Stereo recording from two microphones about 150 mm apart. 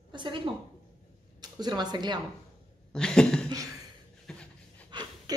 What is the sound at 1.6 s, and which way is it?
Speech, 30° right (ahead or behind).